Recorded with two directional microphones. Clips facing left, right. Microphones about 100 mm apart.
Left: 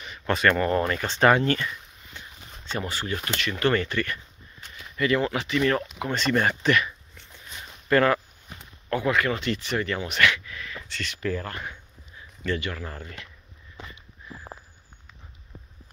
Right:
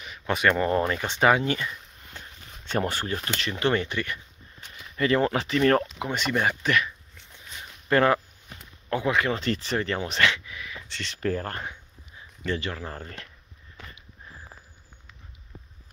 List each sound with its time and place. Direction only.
0.3 s speech: 15° right (ahead or behind)
2.1 s a sound: 45° right (ahead or behind)
2.6 s speech: 55° right (ahead or behind)
3.3 s speech: 25° right (ahead or behind)
4.9 s speech: 35° right (ahead or behind)
5.9 s speech: 15° right (ahead or behind)
7.9 s speech: 25° right (ahead or behind)
9.4 s speech: 35° right (ahead or behind)
10.5 s a sound: 15° right (ahead or behind)
11.1 s speech: 40° right (ahead or behind)
12.4 s speech: 30° right (ahead or behind)
13.8 s a sound: 20° left (ahead or behind)